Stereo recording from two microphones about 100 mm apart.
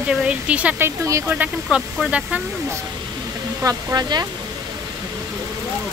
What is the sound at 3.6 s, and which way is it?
Speech, 40° right (ahead or behind).